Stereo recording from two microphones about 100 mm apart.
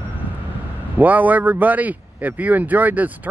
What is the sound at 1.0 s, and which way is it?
Speech, 15° right (ahead or behind).